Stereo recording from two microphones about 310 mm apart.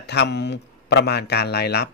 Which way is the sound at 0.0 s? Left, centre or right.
Left.